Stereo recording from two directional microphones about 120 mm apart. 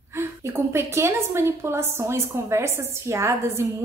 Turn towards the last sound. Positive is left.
turn(degrees=-25)  # may be behind; listen again after turning